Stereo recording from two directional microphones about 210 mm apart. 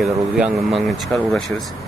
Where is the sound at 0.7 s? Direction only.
Centre (ahead or behind).